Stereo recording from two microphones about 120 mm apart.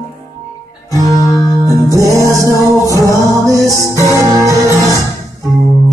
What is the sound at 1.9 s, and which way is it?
Music, 25° right (ahead or behind).